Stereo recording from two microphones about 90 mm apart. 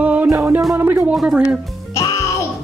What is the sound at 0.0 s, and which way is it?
Music, 20° right (ahead or behind).